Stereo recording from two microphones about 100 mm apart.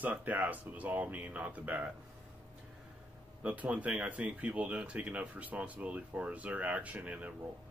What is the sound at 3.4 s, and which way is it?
Speech, 15° right (ahead or behind).